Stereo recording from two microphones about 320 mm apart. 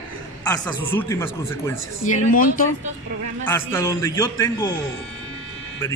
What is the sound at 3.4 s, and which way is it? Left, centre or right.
Speech, centre.